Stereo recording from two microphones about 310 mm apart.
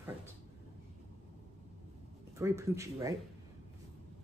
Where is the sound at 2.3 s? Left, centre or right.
Centre.